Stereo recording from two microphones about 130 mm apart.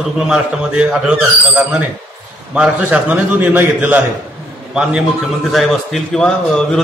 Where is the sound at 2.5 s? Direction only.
10° right (ahead or behind).